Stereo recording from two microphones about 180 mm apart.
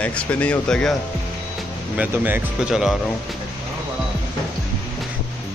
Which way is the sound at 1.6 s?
10° right (ahead or behind).